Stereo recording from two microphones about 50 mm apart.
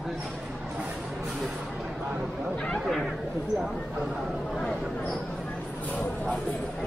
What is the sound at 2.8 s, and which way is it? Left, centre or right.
Speech, centre.